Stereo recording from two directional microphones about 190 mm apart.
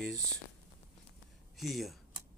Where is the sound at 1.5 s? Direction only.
Centre (ahead or behind).